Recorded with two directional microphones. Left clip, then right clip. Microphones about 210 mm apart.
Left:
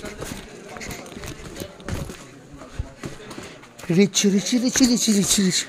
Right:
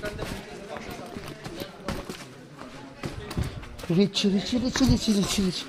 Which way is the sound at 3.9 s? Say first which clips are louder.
Left 5 dB; 35° left (ahead or behind).